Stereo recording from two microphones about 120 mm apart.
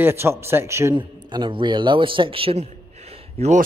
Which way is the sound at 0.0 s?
20° right (ahead or behind).